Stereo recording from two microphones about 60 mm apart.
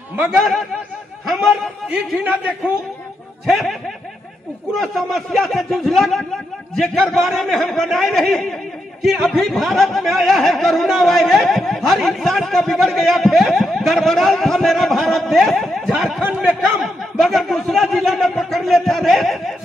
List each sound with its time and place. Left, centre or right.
0.4 s speech: centre
1.9 s a man's voice: right
3.4 s speech: centre
4.7 s speech: centre
16.2 s a man's voice: right
16.7 s speech: centre